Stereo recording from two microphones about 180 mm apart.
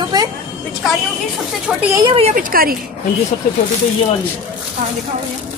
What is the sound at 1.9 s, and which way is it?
Speech, 25° right (ahead or behind).